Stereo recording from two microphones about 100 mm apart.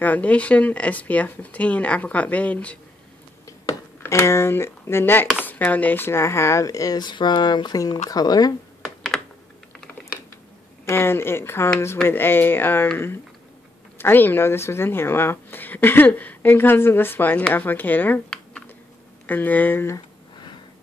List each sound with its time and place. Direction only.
0.0 s speech: 15° left (ahead or behind)
4.0 s speech: 25° left (ahead or behind)
8.8 s computer keyboard: centre (ahead or behind)
10.9 s speech: 25° left (ahead or behind)
19.2 s speech: 15° left (ahead or behind)